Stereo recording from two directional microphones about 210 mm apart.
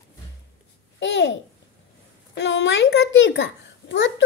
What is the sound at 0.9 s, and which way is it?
Babbling, 60° left (ahead or behind).